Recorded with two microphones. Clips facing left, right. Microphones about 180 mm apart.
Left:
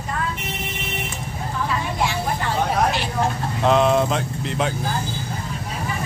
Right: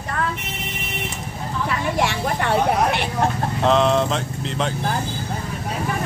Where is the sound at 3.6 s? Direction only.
5° left (ahead or behind).